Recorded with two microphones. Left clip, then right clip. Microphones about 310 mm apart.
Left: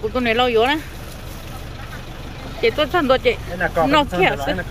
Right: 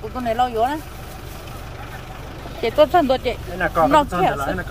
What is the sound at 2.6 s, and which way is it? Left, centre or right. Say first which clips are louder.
Speech: right 3 dB; centre.